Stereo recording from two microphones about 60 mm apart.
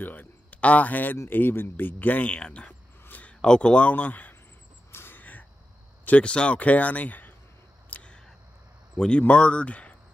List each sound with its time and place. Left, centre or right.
0.0 s a man's voice: left
1.1 s speech: left
2.3 s a sound: centre
3.3 s a man's voice: centre
4.9 s crow: left
5.2 s crow: left
6.0 s speech: left
7.9 s a sound: centre
8.9 s speech: centre